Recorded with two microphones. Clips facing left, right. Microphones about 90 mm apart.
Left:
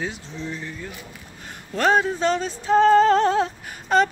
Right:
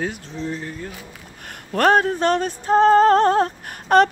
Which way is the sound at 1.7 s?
55° right (ahead or behind).